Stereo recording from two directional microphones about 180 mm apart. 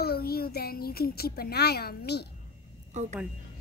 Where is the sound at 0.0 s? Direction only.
60° left (ahead or behind).